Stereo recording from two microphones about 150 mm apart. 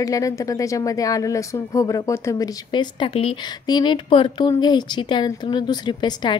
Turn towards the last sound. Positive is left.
turn(degrees=30)  # may be behind; listen again after turning